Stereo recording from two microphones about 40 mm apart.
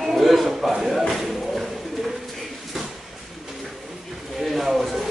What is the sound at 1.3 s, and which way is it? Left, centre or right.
Bird, centre.